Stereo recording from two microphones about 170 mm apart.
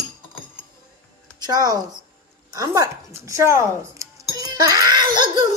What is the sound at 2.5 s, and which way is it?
Music, 20° right (ahead or behind).